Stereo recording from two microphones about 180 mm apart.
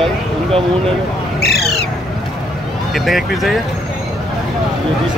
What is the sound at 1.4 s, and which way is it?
Bird, 65° left (ahead or behind).